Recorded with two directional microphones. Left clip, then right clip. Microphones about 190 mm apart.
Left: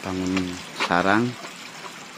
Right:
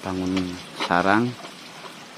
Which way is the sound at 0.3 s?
5° right (ahead or behind).